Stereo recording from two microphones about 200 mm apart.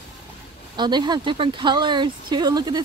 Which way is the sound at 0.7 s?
20° right (ahead or behind).